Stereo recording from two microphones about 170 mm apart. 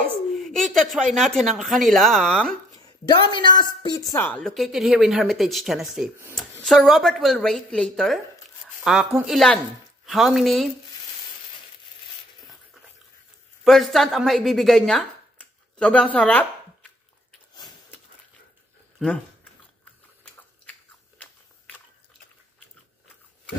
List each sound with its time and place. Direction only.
0.0 s speech: 5° left (ahead or behind)
2.7 s a woman's voice: 25° left (ahead or behind)
4.2 s speech: 5° left (ahead or behind)
13.7 s speech: centre (ahead or behind)
19.0 s speech: centre (ahead or behind)
21.2 s biting: 10° left (ahead or behind)